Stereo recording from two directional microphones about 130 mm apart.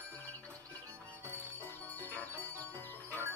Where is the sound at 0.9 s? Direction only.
20° right (ahead or behind).